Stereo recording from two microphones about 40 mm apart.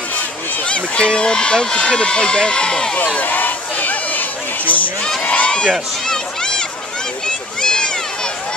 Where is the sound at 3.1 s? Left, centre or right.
Left.